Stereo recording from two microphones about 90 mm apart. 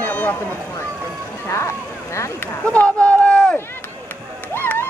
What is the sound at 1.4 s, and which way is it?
Speech, 30° left (ahead or behind).